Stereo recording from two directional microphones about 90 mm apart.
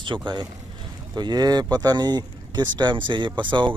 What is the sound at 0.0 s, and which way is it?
Speech, 60° right (ahead or behind).